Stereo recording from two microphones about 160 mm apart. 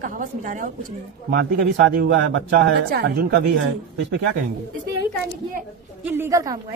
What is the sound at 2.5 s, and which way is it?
Speech, 85° right.